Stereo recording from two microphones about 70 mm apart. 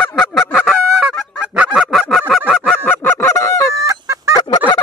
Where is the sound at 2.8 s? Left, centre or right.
Left.